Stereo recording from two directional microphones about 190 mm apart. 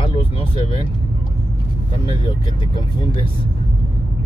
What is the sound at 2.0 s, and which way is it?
Speech, 25° left (ahead or behind).